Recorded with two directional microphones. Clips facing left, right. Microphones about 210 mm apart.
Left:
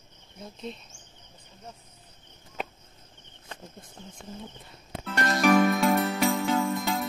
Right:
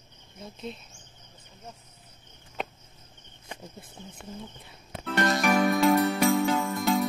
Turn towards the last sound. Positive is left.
turn(degrees=0)  # may be behind; listen again after turning